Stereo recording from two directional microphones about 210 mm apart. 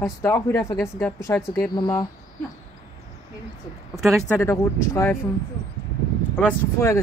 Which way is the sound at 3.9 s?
Centre (ahead or behind).